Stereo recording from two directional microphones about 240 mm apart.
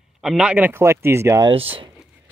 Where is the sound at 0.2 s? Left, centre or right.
Centre.